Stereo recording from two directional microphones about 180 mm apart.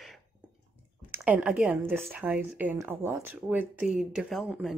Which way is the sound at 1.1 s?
10° right (ahead or behind).